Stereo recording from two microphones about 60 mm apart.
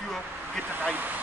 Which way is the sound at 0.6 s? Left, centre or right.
Right.